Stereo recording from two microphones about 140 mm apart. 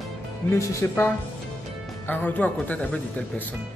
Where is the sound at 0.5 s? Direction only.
20° left (ahead or behind).